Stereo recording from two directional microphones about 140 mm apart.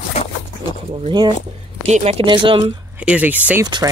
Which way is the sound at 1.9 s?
55° right (ahead or behind).